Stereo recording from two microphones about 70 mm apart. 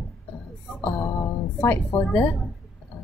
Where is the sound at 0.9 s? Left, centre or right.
Left.